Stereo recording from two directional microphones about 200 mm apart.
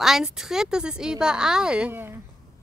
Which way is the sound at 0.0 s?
Centre (ahead or behind).